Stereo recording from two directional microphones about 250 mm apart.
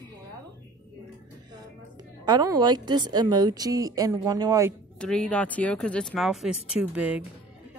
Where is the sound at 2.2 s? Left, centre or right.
Centre.